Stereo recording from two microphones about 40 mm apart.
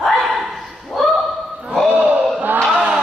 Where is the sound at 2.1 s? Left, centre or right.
Right.